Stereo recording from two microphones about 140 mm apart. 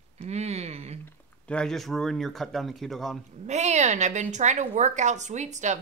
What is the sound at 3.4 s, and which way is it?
A woman's voice, 55° right (ahead or behind).